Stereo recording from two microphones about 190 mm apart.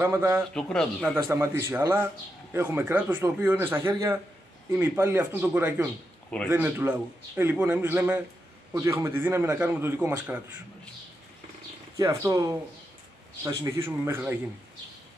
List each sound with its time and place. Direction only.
0.0 s speech: 10° right (ahead or behind)
0.6 s speech: 5° left (ahead or behind)
1.1 s speech: 15° right (ahead or behind)
12.0 s speech: 15° right (ahead or behind)